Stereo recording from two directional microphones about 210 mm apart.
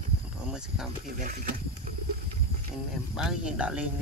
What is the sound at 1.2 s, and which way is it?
Speech, 35° right (ahead or behind).